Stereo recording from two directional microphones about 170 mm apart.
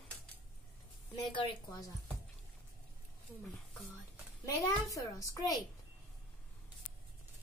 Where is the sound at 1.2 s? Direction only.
30° left (ahead or behind).